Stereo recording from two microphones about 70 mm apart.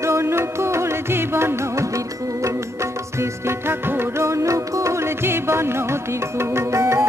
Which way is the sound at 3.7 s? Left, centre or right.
Right.